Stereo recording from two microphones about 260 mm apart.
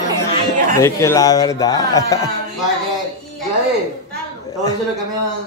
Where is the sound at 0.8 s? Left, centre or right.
Centre.